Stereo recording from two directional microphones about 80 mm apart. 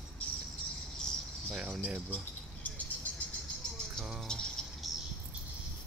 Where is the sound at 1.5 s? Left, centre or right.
Centre.